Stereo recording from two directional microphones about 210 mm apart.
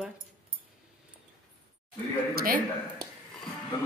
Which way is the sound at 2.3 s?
45° right (ahead or behind).